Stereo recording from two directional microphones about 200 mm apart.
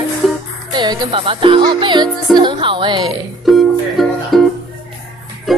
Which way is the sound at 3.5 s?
Centre (ahead or behind).